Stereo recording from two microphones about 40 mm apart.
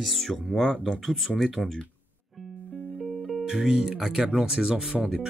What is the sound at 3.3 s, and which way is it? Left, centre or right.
Speech, centre.